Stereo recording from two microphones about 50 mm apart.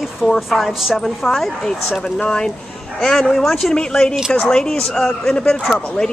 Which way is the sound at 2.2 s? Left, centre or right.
Centre.